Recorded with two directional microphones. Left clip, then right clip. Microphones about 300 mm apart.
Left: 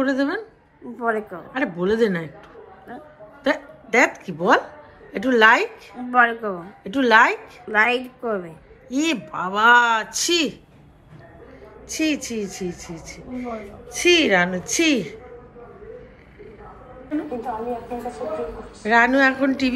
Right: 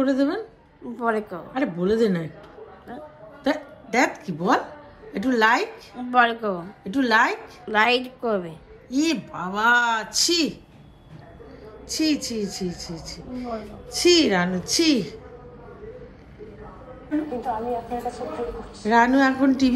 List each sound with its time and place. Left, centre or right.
0.0 s a woman's voice: centre
3.4 s a woman's voice: centre
11.9 s a woman's voice: centre
12.9 s speech: left
13.4 s a woman's voice: centre
17.3 s a woman's voice: centre